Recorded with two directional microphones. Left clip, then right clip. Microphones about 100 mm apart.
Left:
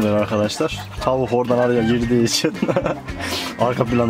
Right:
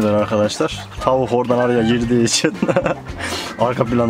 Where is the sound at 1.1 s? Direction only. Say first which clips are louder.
Right 2 dB; 20° right (ahead or behind).